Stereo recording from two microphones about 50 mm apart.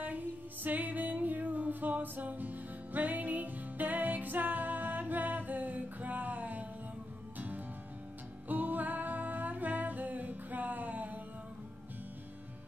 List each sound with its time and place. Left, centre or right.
0.0 s music: right